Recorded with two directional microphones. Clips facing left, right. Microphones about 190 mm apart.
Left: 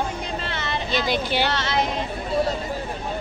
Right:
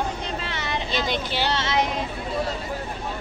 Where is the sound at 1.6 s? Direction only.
20° right (ahead or behind).